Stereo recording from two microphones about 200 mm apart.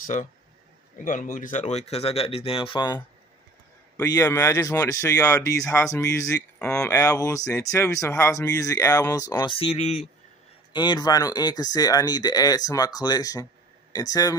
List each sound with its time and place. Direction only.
0.0 s speech: 40° left (ahead or behind)
3.9 s speech: 15° left (ahead or behind); by 10.0 s 30° left (ahead or behind)
10.7 s speech: 20° left (ahead or behind)